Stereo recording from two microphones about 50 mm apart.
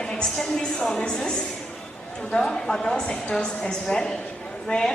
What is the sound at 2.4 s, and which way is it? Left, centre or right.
A woman's voice, centre.